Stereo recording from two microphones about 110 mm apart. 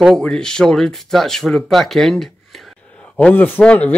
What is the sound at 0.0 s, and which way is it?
A man's voice, 5° left (ahead or behind).